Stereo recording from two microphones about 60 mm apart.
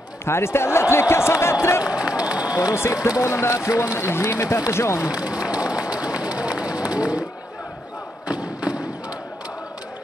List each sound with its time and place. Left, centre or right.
0.2 s speech: left
1.9 s run: centre
2.7 s speech: left
3.5 s speech: left
4.0 s speech: left
4.3 s speech: left
5.1 s run: centre
6.9 s speech: centre
8.3 s thump: centre